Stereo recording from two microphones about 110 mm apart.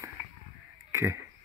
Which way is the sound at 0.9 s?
25° right (ahead or behind).